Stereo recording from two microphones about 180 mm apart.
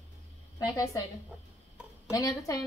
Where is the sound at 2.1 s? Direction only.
20° left (ahead or behind).